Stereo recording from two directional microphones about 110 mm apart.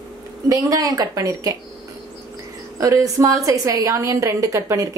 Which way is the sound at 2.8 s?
30° right (ahead or behind).